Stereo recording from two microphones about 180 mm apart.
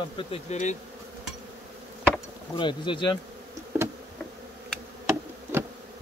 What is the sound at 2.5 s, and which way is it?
Bee, 25° left (ahead or behind).